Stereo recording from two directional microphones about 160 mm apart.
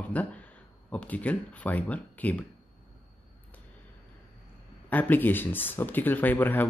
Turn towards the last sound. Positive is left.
turn(degrees=10)  # may be behind; listen again after turning